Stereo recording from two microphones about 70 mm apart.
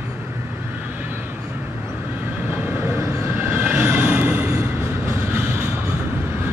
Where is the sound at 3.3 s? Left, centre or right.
Right.